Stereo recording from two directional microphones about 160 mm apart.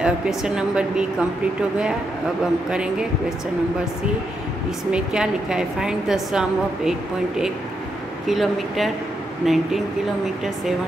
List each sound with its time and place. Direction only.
0.0 s a woman's voice: 5° right (ahead or behind)
2.7 s a woman's voice: 5° right (ahead or behind)
4.9 s a woman's voice: 5° right (ahead or behind)